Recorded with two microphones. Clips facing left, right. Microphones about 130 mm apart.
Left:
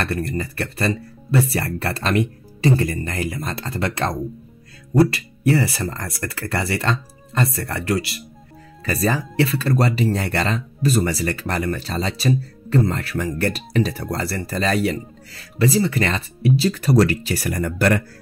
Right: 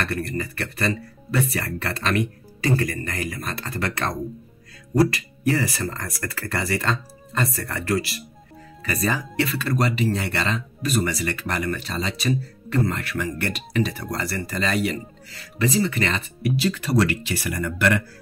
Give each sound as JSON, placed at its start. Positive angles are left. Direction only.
{"t": 0.0, "sound": "speech", "side_deg": 30}